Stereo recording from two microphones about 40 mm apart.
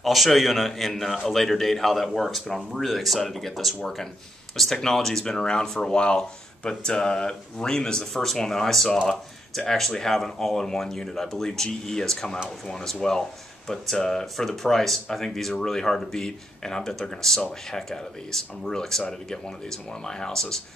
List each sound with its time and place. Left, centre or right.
0.0 s a man's voice: centre